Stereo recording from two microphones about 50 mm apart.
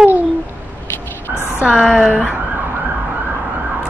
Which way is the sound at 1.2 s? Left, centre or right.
Left.